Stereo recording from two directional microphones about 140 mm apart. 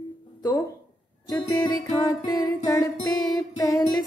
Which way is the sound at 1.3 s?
25° left (ahead or behind).